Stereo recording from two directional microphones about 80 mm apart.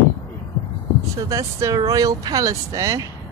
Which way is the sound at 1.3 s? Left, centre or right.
Right.